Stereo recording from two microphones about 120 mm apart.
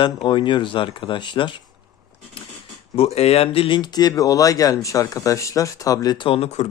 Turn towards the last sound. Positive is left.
turn(degrees=65)  # may be behind; listen again after turning